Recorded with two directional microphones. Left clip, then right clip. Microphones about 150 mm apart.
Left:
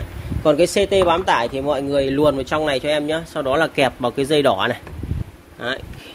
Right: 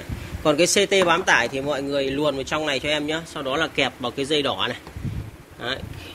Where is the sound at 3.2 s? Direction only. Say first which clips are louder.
Left 6 dB; 40° left (ahead or behind).